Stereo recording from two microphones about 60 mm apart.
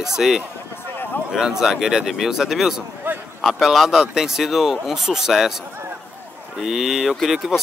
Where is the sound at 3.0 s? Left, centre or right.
Right.